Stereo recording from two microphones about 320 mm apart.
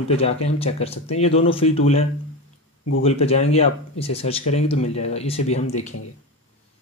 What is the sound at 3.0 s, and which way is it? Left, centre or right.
Speech, centre.